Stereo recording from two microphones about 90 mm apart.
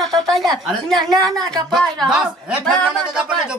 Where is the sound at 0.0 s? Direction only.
Centre (ahead or behind).